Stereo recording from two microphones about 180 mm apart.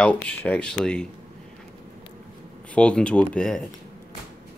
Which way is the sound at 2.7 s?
5° left (ahead or behind).